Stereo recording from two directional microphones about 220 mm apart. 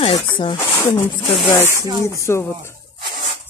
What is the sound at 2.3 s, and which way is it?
Speech, 10° left (ahead or behind).